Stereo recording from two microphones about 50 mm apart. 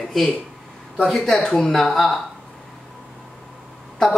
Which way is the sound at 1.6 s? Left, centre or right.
Centre.